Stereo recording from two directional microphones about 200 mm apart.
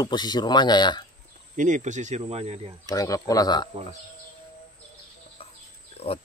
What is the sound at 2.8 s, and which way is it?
Speech, 15° left (ahead or behind).